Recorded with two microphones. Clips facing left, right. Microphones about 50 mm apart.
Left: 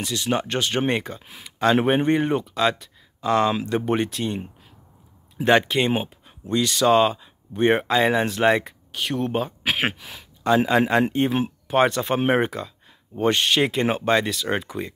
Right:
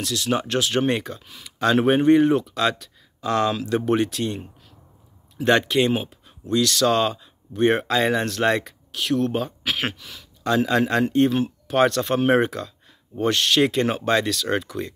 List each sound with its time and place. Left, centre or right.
0.0 s speech: centre
1.2 s speech: left
1.6 s speech: centre
9.6 s speech: left
10.4 s speech: centre